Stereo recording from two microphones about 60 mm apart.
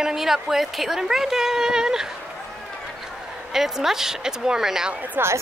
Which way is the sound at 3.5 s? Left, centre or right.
Centre.